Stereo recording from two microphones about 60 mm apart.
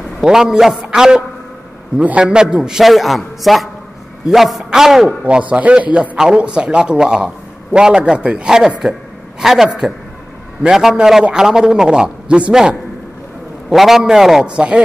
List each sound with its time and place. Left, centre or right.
0.2 s a man's voice: centre
2.8 s a man's voice: centre
5.2 s a man's voice: right
13.7 s a man's voice: centre
14.4 s a man's voice: centre